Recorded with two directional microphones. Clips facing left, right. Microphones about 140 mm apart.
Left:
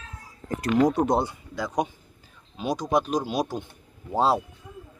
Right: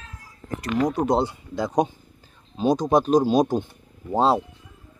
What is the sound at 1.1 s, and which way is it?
Speech, 20° right (ahead or behind).